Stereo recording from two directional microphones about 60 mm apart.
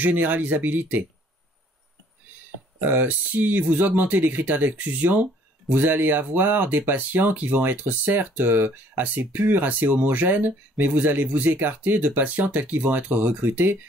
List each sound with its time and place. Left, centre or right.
0.0 s speech: right
2.8 s speech: right